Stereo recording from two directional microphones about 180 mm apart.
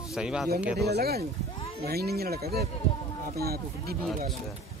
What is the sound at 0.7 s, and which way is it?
Speech, 60° right (ahead or behind).